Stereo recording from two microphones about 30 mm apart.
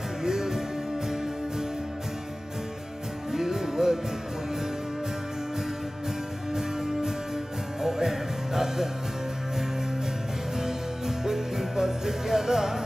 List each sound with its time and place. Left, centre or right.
0.2 s music: centre
3.3 s music: centre
6.5 s music: centre
10.6 s music: centre